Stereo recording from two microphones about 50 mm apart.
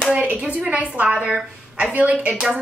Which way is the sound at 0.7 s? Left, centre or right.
Right.